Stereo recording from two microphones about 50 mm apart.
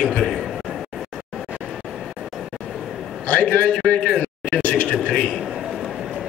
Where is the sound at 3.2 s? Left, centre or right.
Left.